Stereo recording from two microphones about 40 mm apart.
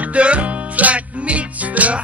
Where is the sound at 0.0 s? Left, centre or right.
Right.